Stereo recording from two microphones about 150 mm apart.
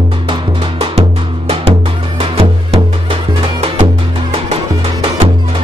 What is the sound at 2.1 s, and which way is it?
Music, 40° right (ahead or behind).